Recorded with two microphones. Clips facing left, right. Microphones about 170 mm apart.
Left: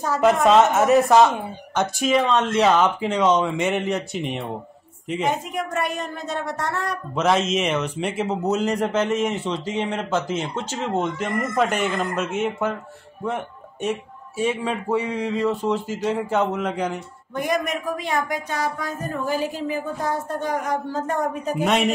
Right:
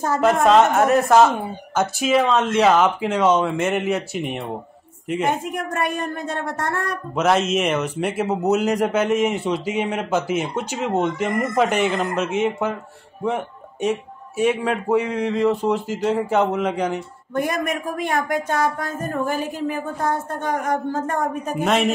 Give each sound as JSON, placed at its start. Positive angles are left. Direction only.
{"t": 0.2, "sound": "speech", "side_deg": 0}
{"t": 5.2, "sound": "speech", "side_deg": -50}
{"t": 7.2, "sound": "a man's voice", "side_deg": -5}
{"t": 17.3, "sound": "speech", "side_deg": -55}
{"t": 21.6, "sound": "speech", "side_deg": 0}